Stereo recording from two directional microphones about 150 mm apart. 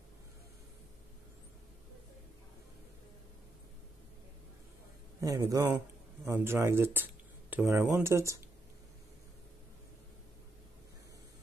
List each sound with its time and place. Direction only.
5.2 s a man's voice: 20° right (ahead or behind)